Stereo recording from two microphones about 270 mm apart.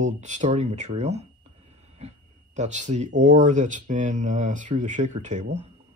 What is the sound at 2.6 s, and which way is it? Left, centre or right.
Speech, right.